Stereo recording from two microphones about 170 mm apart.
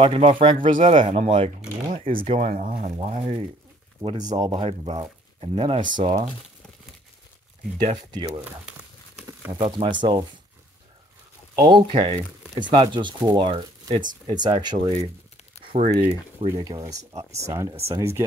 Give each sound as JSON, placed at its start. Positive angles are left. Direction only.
{"t": 0.0, "sound": "speech", "side_deg": -30}
{"t": 0.6, "sound": "speech", "side_deg": -50}
{"t": 0.9, "sound": "speech", "side_deg": -30}
{"t": 8.4, "sound": "crumpling", "side_deg": -5}
{"t": 9.6, "sound": "speech", "side_deg": -35}
{"t": 11.5, "sound": "speech", "side_deg": -25}
{"t": 15.7, "sound": "speech", "side_deg": -35}
{"t": 16.5, "sound": "speech", "side_deg": -20}